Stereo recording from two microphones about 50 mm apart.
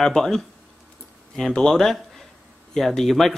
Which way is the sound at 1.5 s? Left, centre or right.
Centre.